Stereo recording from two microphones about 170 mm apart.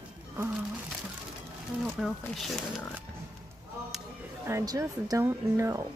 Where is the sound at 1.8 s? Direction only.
Centre (ahead or behind).